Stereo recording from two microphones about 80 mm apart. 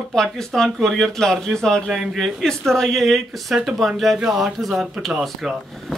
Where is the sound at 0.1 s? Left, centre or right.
Centre.